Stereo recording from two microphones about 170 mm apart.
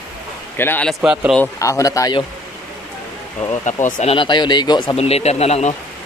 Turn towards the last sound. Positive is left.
turn(degrees=40)  # may be behind; listen again after turning